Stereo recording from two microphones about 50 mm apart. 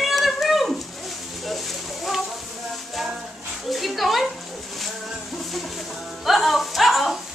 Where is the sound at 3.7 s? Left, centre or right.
Centre.